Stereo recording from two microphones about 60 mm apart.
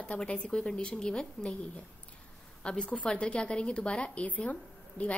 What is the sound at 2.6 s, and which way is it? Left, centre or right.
A woman's voice, centre.